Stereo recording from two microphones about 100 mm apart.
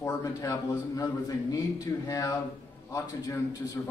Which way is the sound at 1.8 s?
30° left (ahead or behind).